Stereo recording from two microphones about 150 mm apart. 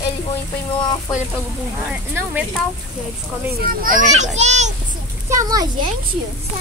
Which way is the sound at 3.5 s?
70° right (ahead or behind).